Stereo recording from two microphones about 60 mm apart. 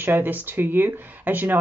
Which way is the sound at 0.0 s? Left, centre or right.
Right.